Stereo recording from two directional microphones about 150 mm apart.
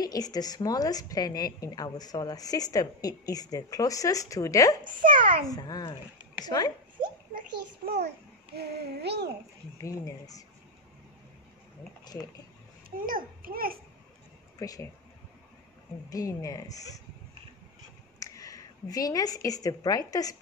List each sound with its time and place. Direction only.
0.0 s a woman's voice: 25° left (ahead or behind)
5.0 s a child's voice: 65° right (ahead or behind)
5.5 s a woman's voice: 25° left (ahead or behind)
7.8 s a child's voice: 90° right
8.5 s child singing: 90° right
9.8 s a woman's voice: 25° left (ahead or behind)
12.0 s speech: 25° left (ahead or behind)
12.9 s a child's voice: 70° right (ahead or behind)
14.6 s a woman's voice: 20° left (ahead or behind)
16.1 s a woman's voice: 20° left (ahead or behind)
18.2 s a woman's voice: 25° left (ahead or behind)